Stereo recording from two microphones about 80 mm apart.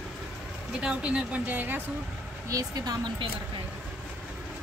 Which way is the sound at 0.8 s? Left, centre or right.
Centre.